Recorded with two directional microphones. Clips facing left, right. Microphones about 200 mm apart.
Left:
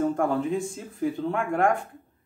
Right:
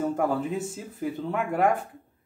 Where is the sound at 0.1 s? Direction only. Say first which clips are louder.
Left 1 dB; 5° right (ahead or behind).